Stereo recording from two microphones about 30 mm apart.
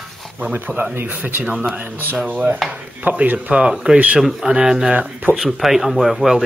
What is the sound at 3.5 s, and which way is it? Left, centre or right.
Speech, right.